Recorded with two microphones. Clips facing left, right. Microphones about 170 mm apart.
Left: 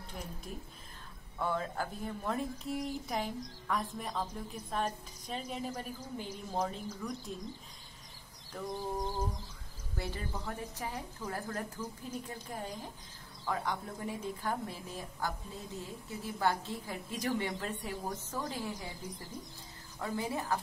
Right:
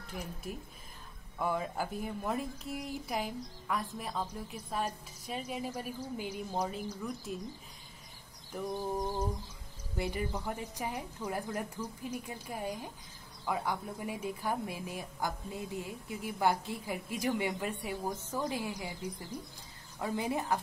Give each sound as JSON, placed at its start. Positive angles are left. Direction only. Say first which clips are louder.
{"t": 1.4, "sound": "a woman's voice", "louder": "right 1 dB", "side_deg": -10}
{"t": 8.5, "sound": "a woman's voice", "louder": "right 2 dB", "side_deg": -10}
{"t": 20.0, "sound": "a woman's voice", "louder": "right 2 dB", "side_deg": -15}